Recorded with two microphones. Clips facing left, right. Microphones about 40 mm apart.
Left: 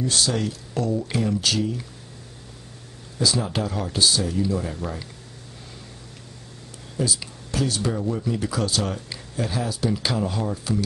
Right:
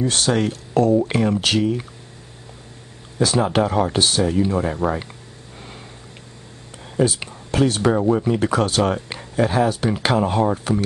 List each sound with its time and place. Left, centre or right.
0.0 s speech: right
3.2 s speech: right
7.0 s speech: right